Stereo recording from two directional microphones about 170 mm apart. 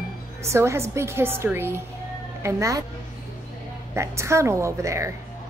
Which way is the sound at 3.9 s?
15° right (ahead or behind).